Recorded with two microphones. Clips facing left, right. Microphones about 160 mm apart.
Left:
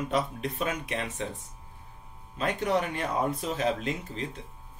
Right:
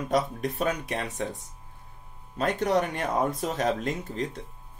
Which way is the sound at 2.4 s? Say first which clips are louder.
Right 3 dB; 45° right (ahead or behind).